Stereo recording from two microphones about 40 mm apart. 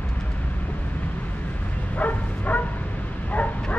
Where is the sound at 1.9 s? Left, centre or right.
Left.